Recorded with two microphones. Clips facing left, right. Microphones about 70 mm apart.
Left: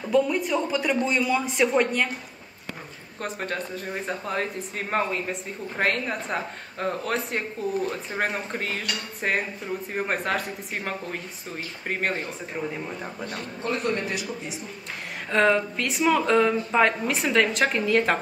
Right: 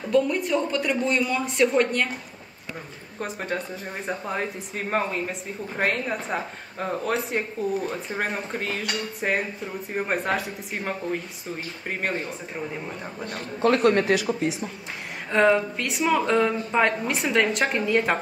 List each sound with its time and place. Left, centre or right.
0.1 s speech: centre
3.2 s speech: centre
13.7 s speech: right
15.3 s speech: centre